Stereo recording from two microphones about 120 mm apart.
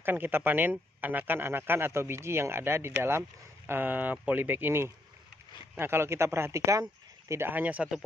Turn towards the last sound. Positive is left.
turn(degrees=-10)  # may be behind; listen again after turning